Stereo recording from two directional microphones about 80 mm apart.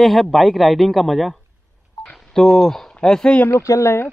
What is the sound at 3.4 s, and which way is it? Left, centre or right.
Speech, left.